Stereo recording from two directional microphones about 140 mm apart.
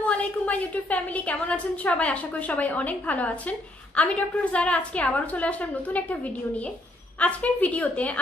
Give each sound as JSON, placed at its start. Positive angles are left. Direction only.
{"t": 0.0, "sound": "a woman's voice", "side_deg": 10}